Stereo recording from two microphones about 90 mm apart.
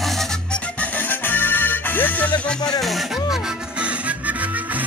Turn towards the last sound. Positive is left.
turn(degrees=-15)  # may be behind; listen again after turning